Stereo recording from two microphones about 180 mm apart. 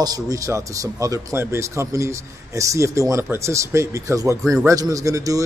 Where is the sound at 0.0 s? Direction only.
20° right (ahead or behind).